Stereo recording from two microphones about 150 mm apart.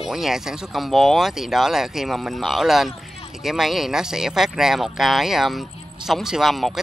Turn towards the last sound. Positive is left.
turn(degrees=0)  # may be behind; listen again after turning